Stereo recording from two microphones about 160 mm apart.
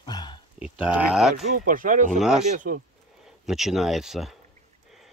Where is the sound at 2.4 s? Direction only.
55° right (ahead or behind).